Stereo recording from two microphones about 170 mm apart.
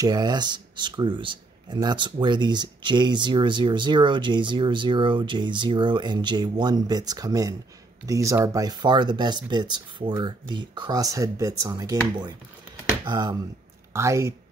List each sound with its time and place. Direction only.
0.0 s speech: 25° right (ahead or behind)
13.0 s speech: 25° right (ahead or behind)